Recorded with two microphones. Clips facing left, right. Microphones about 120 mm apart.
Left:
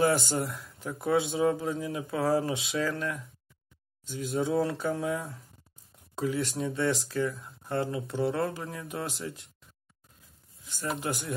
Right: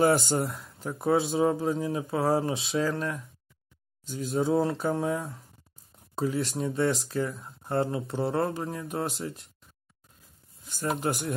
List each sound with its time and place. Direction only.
0.1 s speech: 45° right (ahead or behind)
10.6 s a sound: 45° right (ahead or behind)
11.0 s speech: 50° right (ahead or behind)